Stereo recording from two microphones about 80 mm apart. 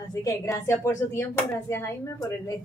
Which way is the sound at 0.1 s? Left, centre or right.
Left.